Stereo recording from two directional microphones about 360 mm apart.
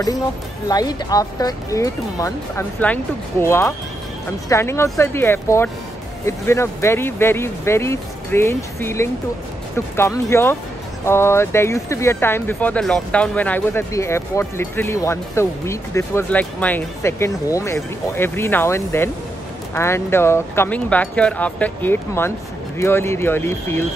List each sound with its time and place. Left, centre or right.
0.7 s speech: centre